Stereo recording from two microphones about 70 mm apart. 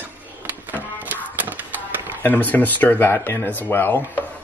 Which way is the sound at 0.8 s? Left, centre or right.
Right.